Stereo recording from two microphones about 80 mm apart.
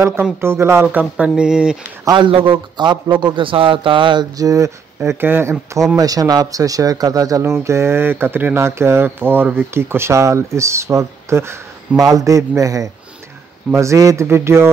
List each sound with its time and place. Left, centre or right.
0.4 s speech: right
0.9 s speech: centre
2.1 s a man's voice: right
4.4 s speech: right
5.2 s speech: right
5.9 s speech: right
12.0 s speech: right